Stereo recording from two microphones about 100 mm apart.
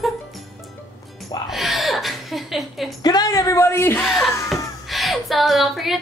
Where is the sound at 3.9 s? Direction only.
Centre (ahead or behind).